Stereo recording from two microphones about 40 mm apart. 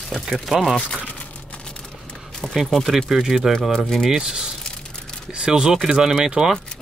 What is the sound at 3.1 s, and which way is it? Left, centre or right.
Speech, centre.